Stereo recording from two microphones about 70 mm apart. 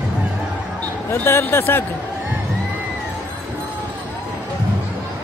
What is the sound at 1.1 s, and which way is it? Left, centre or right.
Speech, left.